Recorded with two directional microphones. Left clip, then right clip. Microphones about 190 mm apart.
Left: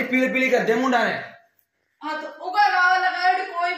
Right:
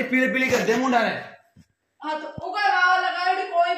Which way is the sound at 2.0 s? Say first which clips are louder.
Even; 50° left (ahead or behind).